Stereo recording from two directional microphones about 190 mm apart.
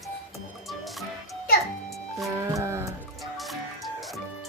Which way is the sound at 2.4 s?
15° right (ahead or behind).